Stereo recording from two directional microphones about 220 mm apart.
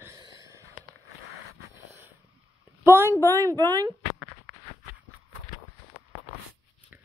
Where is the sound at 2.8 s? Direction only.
10° right (ahead or behind).